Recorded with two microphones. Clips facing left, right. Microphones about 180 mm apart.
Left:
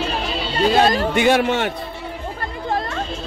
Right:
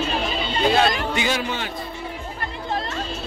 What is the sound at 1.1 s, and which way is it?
Speech, 60° left (ahead or behind).